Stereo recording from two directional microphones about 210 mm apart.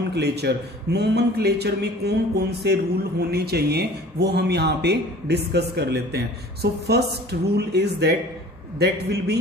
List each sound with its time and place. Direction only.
0.1 s a man's voice: 50° right (ahead or behind)